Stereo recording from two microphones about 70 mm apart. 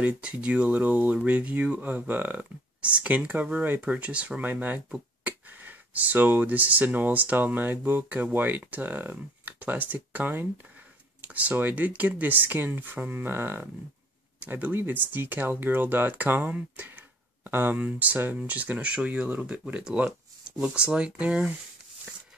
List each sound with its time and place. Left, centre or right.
0.0 s speech: centre